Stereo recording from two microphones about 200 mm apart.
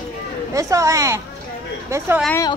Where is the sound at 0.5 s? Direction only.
15° right (ahead or behind).